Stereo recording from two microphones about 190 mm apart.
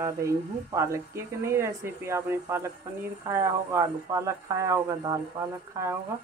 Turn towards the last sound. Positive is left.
turn(degrees=-15)  # may be behind; listen again after turning